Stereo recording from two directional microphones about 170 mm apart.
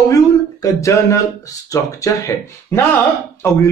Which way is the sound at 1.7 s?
20° left (ahead or behind).